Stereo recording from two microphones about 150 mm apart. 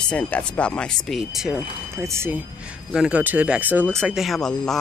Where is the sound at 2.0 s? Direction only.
15° right (ahead or behind).